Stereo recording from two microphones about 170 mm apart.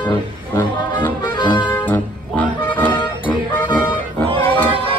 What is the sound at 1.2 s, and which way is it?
Music, 25° left (ahead or behind).